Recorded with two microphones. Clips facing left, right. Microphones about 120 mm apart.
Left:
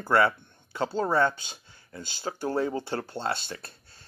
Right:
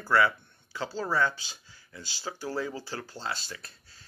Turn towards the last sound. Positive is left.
turn(degrees=60)  # may be behind; listen again after turning